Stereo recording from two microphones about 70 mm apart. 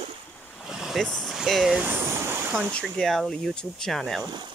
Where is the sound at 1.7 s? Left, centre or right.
Right.